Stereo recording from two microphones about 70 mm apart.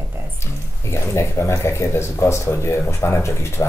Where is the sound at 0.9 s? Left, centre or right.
Left.